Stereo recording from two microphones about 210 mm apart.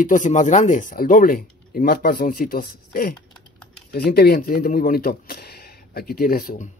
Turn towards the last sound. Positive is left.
turn(degrees=45)  # may be behind; listen again after turning